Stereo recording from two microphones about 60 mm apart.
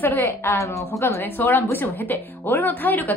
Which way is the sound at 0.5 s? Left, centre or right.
Left.